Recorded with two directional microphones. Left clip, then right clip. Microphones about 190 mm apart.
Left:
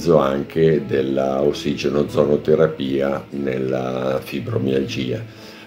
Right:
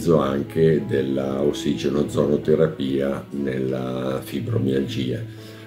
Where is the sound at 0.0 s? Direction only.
15° right (ahead or behind).